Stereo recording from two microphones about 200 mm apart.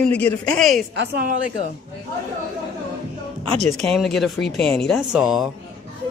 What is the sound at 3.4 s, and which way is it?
Speech, 30° right (ahead or behind).